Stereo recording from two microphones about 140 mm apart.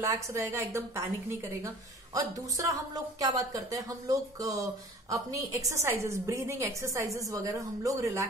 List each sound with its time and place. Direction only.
0.0 s a woman's voice: 20° right (ahead or behind)
2.1 s a woman's voice: 25° right (ahead or behind)